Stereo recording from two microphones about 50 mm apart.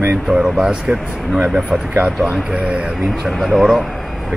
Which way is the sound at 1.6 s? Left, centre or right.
Right.